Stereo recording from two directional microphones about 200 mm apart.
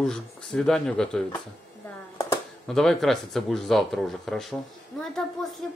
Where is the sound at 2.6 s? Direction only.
Centre (ahead or behind).